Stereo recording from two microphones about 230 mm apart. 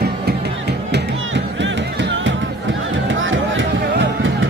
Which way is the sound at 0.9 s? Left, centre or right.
Right.